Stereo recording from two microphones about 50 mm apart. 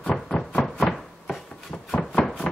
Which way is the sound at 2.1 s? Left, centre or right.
Centre.